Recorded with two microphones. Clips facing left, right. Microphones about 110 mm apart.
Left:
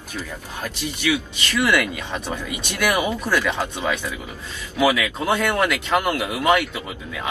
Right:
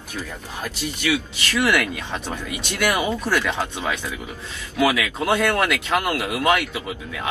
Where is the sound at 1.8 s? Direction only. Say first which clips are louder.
Left 1 dB; 15° left (ahead or behind).